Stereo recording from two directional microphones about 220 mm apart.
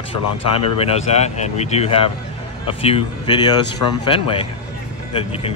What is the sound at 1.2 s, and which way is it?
Speech, 30° left (ahead or behind).